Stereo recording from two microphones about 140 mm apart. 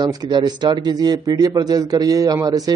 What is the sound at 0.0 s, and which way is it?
Speech, 30° right (ahead or behind).